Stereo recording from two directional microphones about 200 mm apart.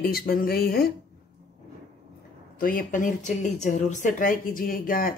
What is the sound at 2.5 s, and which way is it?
Speech, 45° left (ahead or behind).